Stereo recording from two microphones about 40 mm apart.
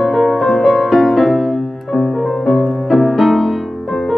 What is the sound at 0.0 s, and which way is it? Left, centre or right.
Music, centre.